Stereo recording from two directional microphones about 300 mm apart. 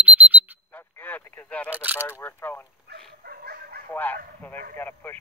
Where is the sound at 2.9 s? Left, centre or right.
Right.